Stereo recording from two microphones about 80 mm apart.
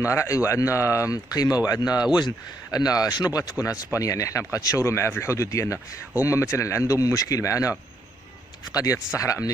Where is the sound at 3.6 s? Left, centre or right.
Left.